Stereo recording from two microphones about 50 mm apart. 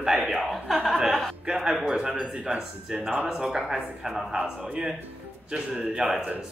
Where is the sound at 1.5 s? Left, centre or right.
Centre.